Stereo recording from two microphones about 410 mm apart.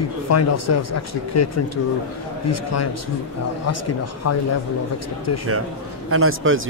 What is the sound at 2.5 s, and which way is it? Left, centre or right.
Speech, left.